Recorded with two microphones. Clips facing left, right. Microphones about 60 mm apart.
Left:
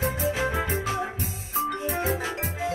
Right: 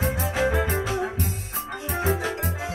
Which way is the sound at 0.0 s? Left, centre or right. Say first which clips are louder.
Right 2 dB; right.